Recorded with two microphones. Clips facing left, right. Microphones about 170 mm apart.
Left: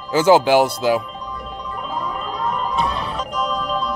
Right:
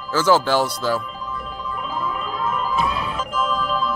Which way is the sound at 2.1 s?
35° left (ahead or behind).